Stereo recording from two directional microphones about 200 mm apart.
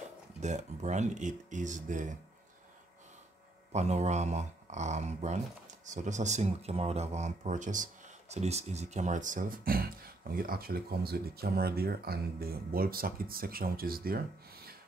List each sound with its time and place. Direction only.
0.4 s speech: 35° right (ahead or behind)
3.7 s speech: 35° right (ahead or behind); by 14.8 s 50° right (ahead or behind)